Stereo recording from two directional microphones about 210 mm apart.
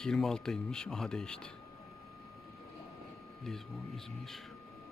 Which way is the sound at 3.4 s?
Centre (ahead or behind).